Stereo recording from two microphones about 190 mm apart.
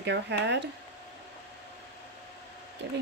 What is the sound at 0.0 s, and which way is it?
Speech, 65° right (ahead or behind).